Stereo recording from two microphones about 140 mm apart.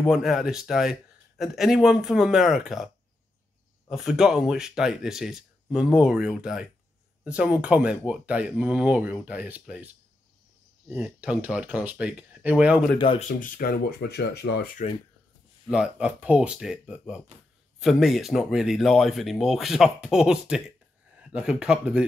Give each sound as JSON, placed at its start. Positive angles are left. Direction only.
{"t": 0.0, "sound": "speech", "side_deg": 0}
{"t": 3.9, "sound": "speech", "side_deg": -5}
{"t": 10.9, "sound": "speech", "side_deg": -10}
{"t": 12.9, "sound": "speech", "side_deg": 35}
{"t": 13.3, "sound": "speech", "side_deg": 75}
{"t": 15.6, "sound": "speech", "side_deg": -5}